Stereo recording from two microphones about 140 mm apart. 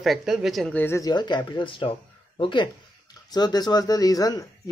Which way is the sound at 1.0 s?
30° left (ahead or behind).